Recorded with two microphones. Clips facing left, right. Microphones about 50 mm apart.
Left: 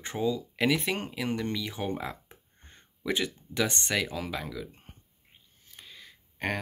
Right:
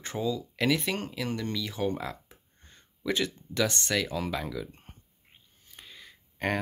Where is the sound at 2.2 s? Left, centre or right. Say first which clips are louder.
Left 2 dB; left.